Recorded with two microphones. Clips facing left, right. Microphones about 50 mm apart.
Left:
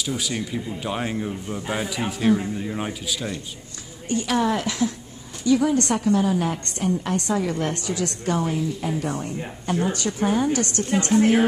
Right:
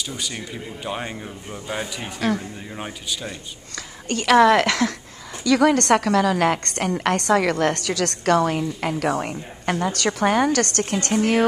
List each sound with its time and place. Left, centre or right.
0.0 s speech: centre
4.1 s speech: right
5.4 s a woman's voice: right